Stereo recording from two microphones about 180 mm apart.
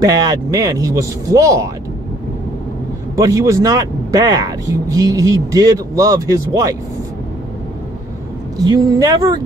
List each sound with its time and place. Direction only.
0.0 s speech: 20° right (ahead or behind)
3.2 s speech: 20° right (ahead or behind)
8.6 s speech: 20° right (ahead or behind)